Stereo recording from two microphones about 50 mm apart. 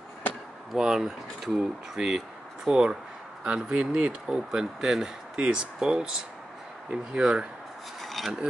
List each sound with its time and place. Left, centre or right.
0.7 s speech: centre
8.0 s filing: centre